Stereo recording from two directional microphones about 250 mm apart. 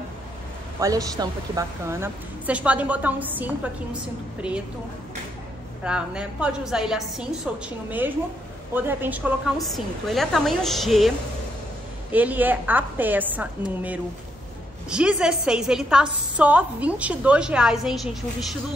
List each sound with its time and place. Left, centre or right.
0.7 s a woman's voice: centre
5.9 s a woman's voice: centre